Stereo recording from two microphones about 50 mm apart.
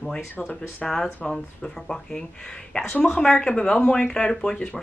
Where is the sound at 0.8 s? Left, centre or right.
Centre.